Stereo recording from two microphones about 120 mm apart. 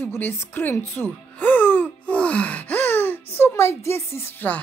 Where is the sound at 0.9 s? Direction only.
15° left (ahead or behind).